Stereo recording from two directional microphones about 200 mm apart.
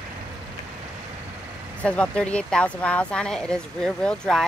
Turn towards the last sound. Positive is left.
turn(degrees=5)  # may be behind; listen again after turning